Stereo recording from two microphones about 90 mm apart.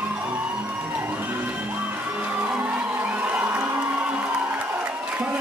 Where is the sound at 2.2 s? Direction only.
15° right (ahead or behind).